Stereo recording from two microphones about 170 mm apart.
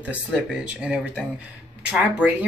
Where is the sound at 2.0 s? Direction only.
10° right (ahead or behind).